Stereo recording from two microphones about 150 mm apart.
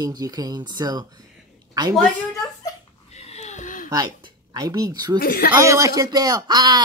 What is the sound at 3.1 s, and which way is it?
Wheeze, 45° left (ahead or behind).